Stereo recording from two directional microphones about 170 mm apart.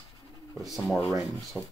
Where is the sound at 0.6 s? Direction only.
Centre (ahead or behind).